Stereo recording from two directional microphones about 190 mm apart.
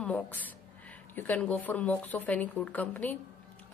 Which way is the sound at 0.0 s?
10° left (ahead or behind).